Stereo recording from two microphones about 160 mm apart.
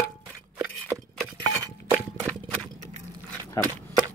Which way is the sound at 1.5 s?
15° right (ahead or behind).